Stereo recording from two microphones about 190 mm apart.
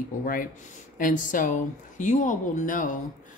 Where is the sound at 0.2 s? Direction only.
45° left (ahead or behind).